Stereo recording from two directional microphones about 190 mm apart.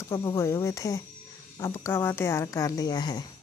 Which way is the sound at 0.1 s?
15° left (ahead or behind).